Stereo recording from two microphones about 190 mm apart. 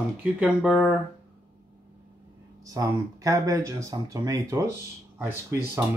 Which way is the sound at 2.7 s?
15° right (ahead or behind).